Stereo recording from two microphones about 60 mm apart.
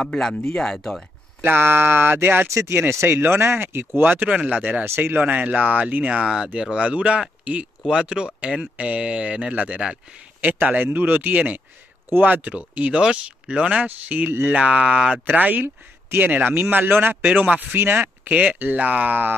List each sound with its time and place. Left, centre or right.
0.0 s speech: centre
1.4 s speech: right
4.0 s speech: right
4.8 s speech: right
5.2 s speech: right
6.2 s speech: centre
10.4 s speech: right
15.2 s speech: right